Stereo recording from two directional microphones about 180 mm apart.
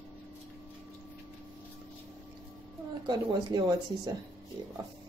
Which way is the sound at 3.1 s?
20° right (ahead or behind).